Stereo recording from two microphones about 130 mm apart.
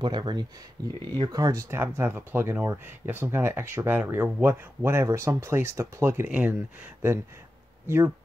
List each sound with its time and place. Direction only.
0.0 s speech: 35° right (ahead or behind); by 6.5 s 10° right (ahead or behind)
7.8 s speech: 20° right (ahead or behind)